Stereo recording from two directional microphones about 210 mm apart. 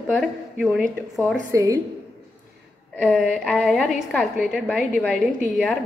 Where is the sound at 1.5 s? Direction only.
15° right (ahead or behind).